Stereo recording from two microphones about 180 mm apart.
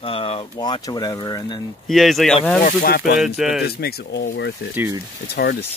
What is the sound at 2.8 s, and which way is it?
Speech, 60° left (ahead or behind).